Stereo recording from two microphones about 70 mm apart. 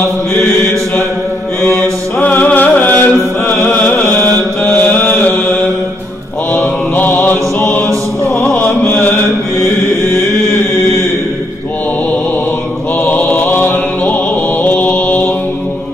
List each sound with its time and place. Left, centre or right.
0.0 s mantra: left
1.8 s music: left
4.2 s mantra: left
6.5 s music: left
13.0 s music: left
14.6 s mantra: left